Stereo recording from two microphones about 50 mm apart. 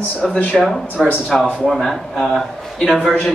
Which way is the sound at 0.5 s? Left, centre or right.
Centre.